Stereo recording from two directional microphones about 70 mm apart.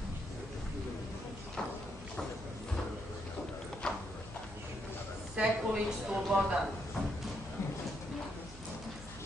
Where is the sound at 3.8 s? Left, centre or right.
Centre.